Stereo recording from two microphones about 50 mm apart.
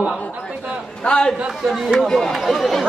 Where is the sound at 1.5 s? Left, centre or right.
Centre.